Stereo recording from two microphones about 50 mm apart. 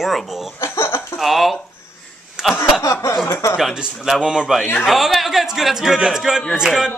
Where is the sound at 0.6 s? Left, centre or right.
Left.